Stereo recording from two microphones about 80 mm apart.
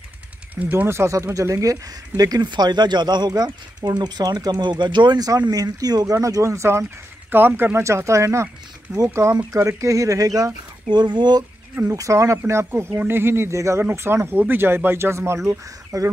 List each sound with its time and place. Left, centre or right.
0.6 s speech: right
7.2 s speech: right
7.8 s speech: right
8.9 s speech: centre
9.5 s speech: right
10.9 s speech: right
11.9 s speech: right